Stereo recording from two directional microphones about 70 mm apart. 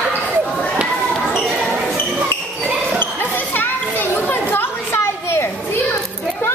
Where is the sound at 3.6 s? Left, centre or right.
Left.